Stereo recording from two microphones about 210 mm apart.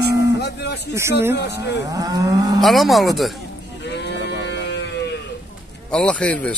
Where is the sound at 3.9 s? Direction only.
55° left (ahead or behind).